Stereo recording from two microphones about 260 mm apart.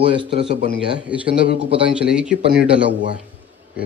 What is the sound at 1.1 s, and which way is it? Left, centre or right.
Speech, centre.